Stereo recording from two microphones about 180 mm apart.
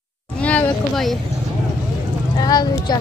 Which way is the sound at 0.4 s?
5° left (ahead or behind).